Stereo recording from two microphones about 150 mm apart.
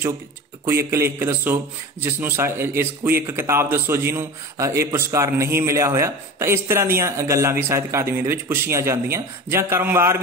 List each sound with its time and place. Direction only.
0.7 s a man's voice: 15° right (ahead or behind)